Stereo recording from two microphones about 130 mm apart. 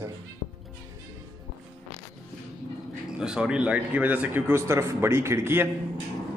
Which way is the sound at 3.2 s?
5° right (ahead or behind).